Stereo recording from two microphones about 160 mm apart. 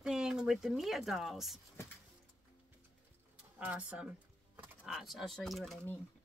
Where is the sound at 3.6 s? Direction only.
10° right (ahead or behind).